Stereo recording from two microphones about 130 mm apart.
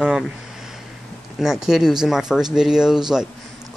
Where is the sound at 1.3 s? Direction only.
5° right (ahead or behind).